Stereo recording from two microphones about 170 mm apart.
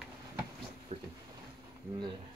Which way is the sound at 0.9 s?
35° right (ahead or behind).